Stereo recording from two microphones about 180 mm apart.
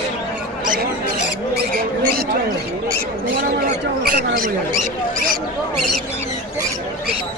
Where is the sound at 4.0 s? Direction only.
60° right (ahead or behind).